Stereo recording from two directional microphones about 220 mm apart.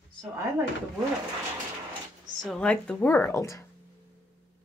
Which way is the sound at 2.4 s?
5° left (ahead or behind).